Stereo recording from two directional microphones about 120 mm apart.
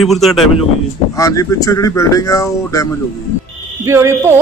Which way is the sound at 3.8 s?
25° right (ahead or behind).